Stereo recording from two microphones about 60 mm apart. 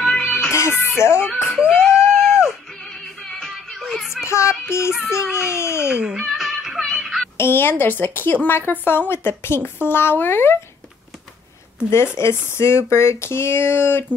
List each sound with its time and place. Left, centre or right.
0.0 s music: centre
0.5 s music: left
1.3 s a sound: centre
1.7 s music: centre
2.8 s music: centre
4.2 s child singing: left
5.5 s a sound: left
5.9 s music: centre
7.3 s a woman's voice: left
11.9 s speech: left